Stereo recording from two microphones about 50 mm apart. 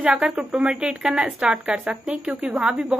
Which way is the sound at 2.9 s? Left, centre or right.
Centre.